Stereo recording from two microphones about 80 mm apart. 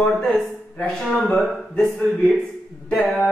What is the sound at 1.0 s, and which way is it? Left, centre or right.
Speech, centre.